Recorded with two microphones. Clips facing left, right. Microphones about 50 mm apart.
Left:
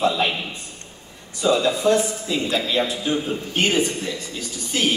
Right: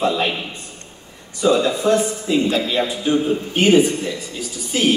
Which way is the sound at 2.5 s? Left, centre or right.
Centre.